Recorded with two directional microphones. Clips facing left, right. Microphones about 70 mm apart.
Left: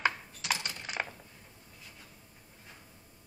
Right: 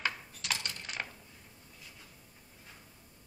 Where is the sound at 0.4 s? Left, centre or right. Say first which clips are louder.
Left 4 dB; centre.